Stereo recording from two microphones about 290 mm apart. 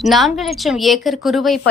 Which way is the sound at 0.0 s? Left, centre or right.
Centre.